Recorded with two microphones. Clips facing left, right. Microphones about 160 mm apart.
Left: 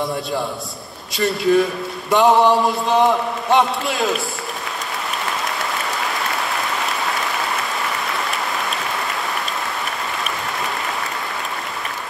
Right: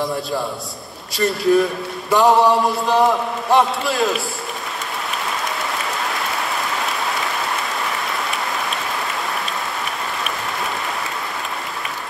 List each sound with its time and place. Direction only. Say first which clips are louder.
1.1 s a man's voice: even; centre (ahead or behind)